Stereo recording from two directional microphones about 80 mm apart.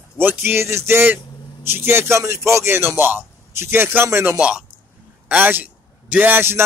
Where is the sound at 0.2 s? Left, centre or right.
Right.